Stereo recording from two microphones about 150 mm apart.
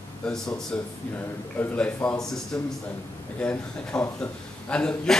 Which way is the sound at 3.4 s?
10° left (ahead or behind).